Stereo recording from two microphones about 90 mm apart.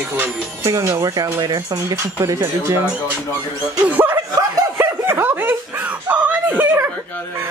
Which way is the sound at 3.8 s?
20° right (ahead or behind).